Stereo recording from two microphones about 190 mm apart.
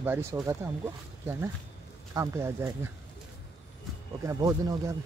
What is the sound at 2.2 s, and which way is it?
Speech, 15° right (ahead or behind).